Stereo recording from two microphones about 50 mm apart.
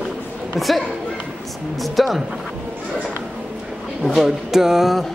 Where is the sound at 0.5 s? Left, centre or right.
Centre.